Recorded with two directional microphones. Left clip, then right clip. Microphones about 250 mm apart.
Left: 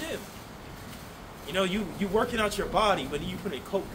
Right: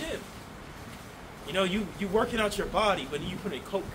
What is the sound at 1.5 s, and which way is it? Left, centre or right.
Speech, centre.